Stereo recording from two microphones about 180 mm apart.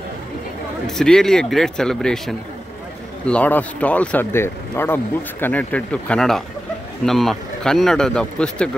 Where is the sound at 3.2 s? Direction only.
5° left (ahead or behind).